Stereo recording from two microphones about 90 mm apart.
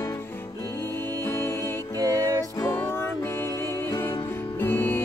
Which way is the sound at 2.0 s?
40° right (ahead or behind).